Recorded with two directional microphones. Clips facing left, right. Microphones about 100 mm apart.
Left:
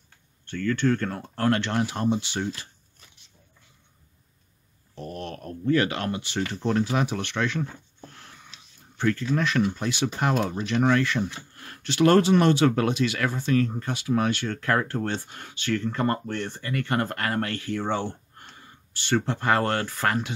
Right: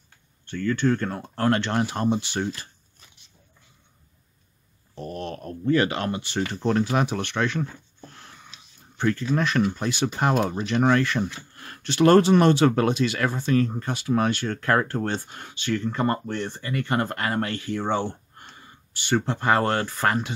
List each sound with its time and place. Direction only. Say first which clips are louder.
0.5 s speech: right 1 dB; 20° right (ahead or behind); by 2.7 s 45° right (ahead or behind)
4.9 s speech: right 2 dB; 25° right (ahead or behind)
6.5 s speech: right 2 dB; 50° right (ahead or behind)
8.5 s a sound: right 1 dB; 25° right (ahead or behind)
9.3 s speech: right 1 dB; 40° right (ahead or behind)